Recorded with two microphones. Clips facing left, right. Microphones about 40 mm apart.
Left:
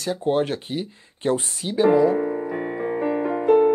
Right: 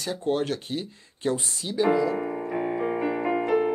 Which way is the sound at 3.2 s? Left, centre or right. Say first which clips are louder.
Left 1 dB; right.